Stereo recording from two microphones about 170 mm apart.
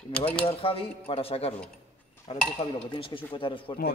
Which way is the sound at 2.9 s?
30° left (ahead or behind).